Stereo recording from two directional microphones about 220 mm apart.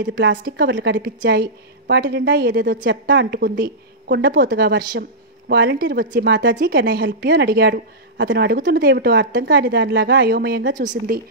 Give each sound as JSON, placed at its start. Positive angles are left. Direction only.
{"t": 0.0, "sound": "speech", "side_deg": -50}